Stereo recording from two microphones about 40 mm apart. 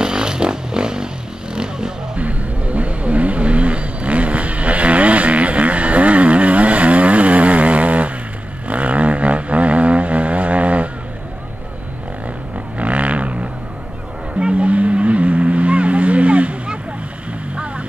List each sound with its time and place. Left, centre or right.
0.0 s vehicle: centre
2.1 s vehicle: right
12.7 s a sound: right
14.4 s vehicle: right